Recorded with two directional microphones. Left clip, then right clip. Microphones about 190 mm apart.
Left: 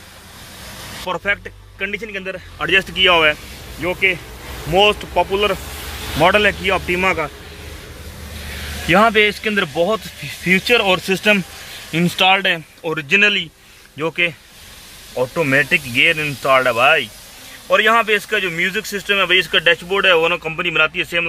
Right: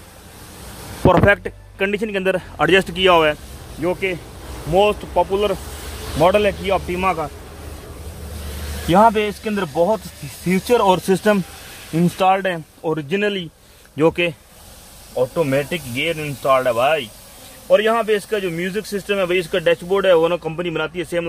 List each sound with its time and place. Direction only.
1.0 s speech: 35° right (ahead or behind)
4.7 s speech: 15° right (ahead or behind)
8.8 s speech: 5° right (ahead or behind)
10.7 s speech: 25° right (ahead or behind)
11.9 s speech: 15° right (ahead or behind); by 14.3 s 30° right (ahead or behind)
15.3 s speech: 5° right (ahead or behind)
17.6 s speech: 20° right (ahead or behind)